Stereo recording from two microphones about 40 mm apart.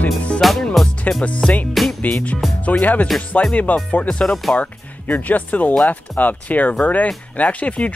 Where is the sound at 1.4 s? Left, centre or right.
Centre.